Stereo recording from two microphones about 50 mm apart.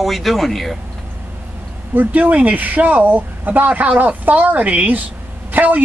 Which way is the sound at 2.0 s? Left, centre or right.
Right.